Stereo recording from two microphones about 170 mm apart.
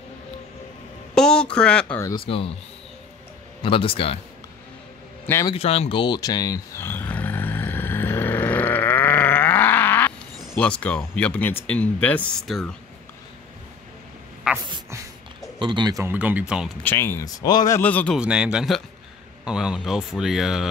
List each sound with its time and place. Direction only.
1.1 s speech: 5° left (ahead or behind)
2.2 s a man's voice: 35° left (ahead or behind)
3.6 s a man's voice: 30° left (ahead or behind)
5.2 s a man's voice: 15° left (ahead or behind)
5.5 s roar: 35° left (ahead or behind); by 12.7 s centre (ahead or behind)
14.5 s a sound: 5° right (ahead or behind)
15.6 s speech: 25° right (ahead or behind)
16.0 s speech: 10° right (ahead or behind)
16.8 s speech: 15° left (ahead or behind)
18.1 s speech: 5° right (ahead or behind)